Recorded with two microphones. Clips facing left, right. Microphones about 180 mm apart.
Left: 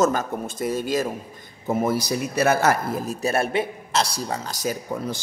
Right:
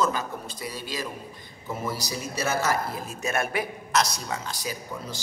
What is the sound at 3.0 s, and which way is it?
A man's voice, 35° left (ahead or behind).